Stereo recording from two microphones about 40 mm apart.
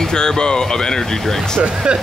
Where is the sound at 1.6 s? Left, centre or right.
Right.